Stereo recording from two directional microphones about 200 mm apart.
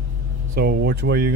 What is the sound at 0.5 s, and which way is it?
Speech, 50° right (ahead or behind).